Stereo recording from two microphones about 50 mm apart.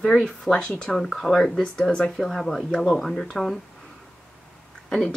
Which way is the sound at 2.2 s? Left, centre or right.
Centre.